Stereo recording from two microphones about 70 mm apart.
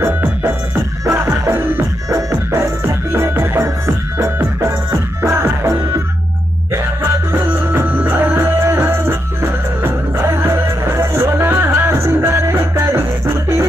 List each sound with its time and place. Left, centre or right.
0.0 s music: right
2.5 s music: right